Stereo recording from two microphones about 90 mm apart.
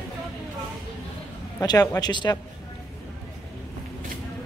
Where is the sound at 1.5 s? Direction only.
40° left (ahead or behind).